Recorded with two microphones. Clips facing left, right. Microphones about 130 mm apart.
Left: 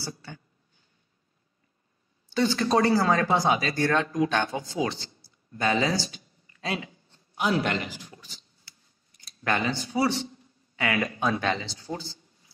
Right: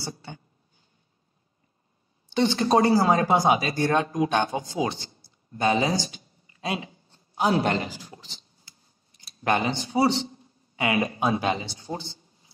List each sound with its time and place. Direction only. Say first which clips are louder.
0.0 s speech: right 2 dB; 25° right (ahead or behind)
2.2 s speech: right 2 dB; 20° right (ahead or behind)
7.1 s a sound: right 3 dB; 30° right (ahead or behind)
11.1 s speech: right 2 dB; 20° right (ahead or behind)